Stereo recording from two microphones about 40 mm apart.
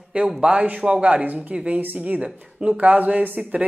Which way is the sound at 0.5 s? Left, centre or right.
Right.